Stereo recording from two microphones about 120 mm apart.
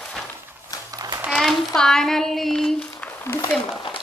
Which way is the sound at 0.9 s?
30° right (ahead or behind).